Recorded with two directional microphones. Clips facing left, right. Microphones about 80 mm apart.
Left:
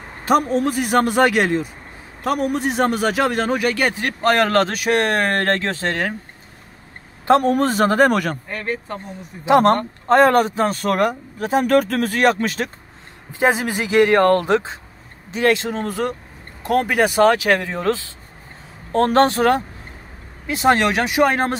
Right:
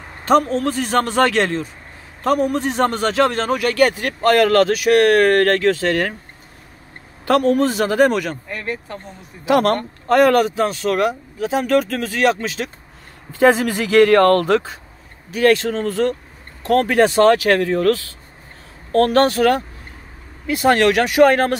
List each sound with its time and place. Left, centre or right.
0.2 s a man's voice: centre; by 5.9 s left
7.4 s speech: left
9.4 s speech: left
13.3 s a man's voice: centre